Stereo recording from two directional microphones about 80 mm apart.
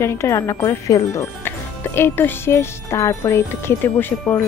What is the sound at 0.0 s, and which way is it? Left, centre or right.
Music, left.